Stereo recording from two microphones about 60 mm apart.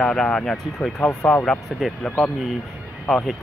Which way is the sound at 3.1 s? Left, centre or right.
Centre.